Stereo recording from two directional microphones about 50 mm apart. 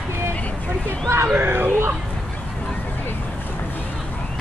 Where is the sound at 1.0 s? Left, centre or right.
Right.